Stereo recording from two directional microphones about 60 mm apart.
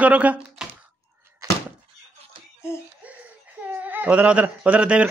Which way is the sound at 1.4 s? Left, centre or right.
Right.